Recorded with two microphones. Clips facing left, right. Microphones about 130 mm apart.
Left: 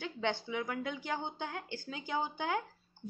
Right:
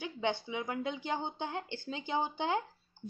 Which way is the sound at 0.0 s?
20° right (ahead or behind).